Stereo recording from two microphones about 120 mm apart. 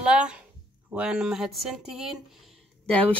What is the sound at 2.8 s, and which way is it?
Speech, 10° left (ahead or behind).